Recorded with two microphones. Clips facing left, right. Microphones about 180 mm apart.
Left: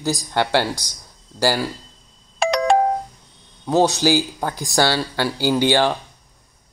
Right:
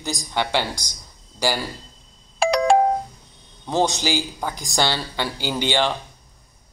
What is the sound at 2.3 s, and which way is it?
Doorbell, centre (ahead or behind).